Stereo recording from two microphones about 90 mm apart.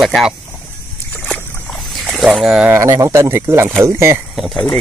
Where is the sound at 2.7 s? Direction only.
40° right (ahead or behind).